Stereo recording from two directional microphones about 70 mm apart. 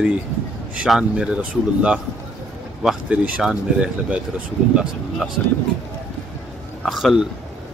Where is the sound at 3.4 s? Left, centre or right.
Centre.